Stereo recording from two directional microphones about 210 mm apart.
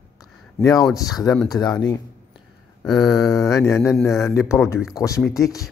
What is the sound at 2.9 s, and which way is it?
Mantra, centre (ahead or behind).